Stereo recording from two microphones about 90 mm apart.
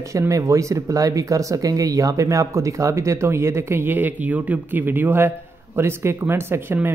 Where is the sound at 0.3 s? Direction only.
35° right (ahead or behind).